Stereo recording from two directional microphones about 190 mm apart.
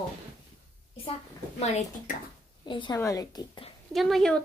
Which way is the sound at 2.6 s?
25° left (ahead or behind).